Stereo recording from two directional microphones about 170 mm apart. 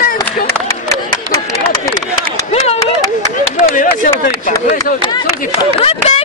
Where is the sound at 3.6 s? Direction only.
50° left (ahead or behind).